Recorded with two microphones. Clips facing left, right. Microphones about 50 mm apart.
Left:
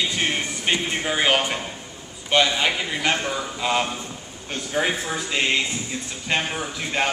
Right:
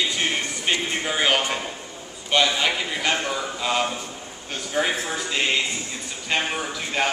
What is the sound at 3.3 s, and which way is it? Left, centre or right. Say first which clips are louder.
Speech: left 1 dB; centre.